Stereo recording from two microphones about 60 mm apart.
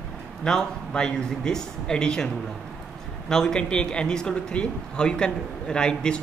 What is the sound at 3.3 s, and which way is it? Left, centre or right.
Speech, centre.